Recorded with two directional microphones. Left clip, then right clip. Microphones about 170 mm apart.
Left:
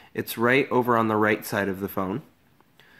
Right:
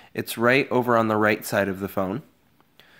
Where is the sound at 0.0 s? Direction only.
30° right (ahead or behind).